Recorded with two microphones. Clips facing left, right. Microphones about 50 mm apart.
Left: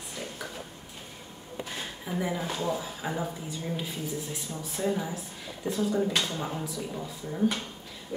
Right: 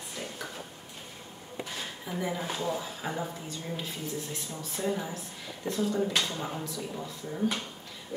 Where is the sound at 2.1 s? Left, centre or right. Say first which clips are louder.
Left 2 dB; centre.